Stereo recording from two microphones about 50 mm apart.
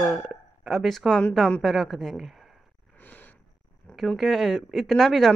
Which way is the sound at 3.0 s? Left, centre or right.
Left.